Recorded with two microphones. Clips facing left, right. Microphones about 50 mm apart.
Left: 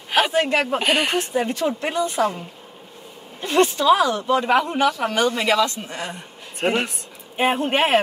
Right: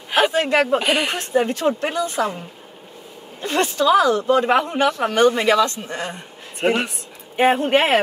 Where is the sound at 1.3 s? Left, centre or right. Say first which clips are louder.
Right 3 dB; right.